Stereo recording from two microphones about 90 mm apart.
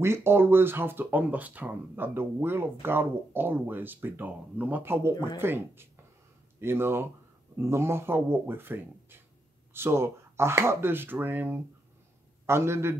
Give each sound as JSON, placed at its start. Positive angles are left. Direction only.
{"t": 0.0, "sound": "speech", "side_deg": -30}